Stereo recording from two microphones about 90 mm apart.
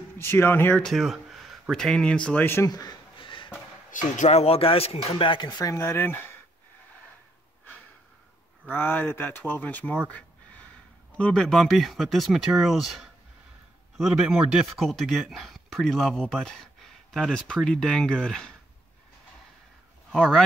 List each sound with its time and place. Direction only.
0.2 s speech: 25° left (ahead or behind)
0.8 s speech: centre (ahead or behind)
2.4 s speech: 25° left (ahead or behind)
2.7 s speech: 45° left (ahead or behind)
3.2 s a sound: 65° left (ahead or behind)
4.5 s speech: 90° left; by 5.5 s 60° left (ahead or behind)
5.6 s speech: 35° left (ahead or behind)
8.6 s speech: 25° left (ahead or behind)
11.1 s speech: 15° left (ahead or behind)
11.4 s speech: 5° left (ahead or behind)
20.1 s speech: 5° left (ahead or behind)